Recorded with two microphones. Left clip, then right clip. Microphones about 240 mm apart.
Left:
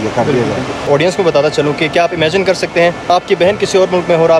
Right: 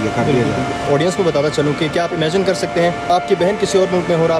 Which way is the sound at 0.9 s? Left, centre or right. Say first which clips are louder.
Left 6 dB; centre.